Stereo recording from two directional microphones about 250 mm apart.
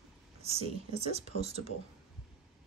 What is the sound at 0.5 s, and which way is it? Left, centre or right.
Speech, right.